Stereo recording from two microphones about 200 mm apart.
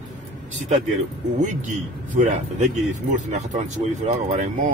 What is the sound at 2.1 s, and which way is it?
Speech, 40° right (ahead or behind).